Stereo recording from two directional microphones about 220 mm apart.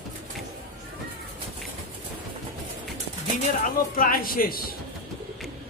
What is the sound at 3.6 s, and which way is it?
A man's voice, 40° left (ahead or behind).